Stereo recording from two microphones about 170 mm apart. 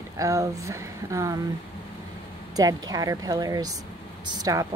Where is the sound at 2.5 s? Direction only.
20° right (ahead or behind).